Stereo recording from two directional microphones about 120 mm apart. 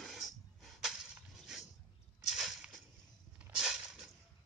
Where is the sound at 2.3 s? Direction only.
5° right (ahead or behind).